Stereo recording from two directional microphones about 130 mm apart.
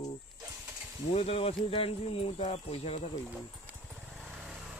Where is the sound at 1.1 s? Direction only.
50° left (ahead or behind).